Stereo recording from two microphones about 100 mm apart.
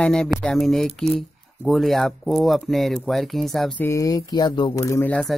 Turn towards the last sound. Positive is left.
turn(degrees=0)  # may be behind; listen again after turning